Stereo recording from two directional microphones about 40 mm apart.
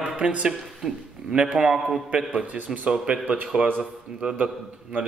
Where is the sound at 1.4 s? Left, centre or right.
Centre.